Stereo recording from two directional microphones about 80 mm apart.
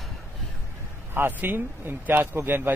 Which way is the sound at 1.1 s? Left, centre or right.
Right.